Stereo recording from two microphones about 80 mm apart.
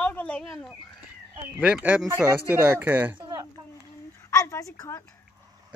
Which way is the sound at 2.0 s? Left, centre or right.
Right.